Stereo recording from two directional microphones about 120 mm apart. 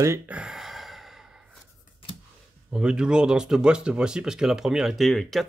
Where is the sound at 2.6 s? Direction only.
5° right (ahead or behind).